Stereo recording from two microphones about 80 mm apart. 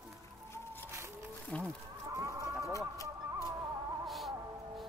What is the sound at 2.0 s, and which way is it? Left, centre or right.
Chicken, right.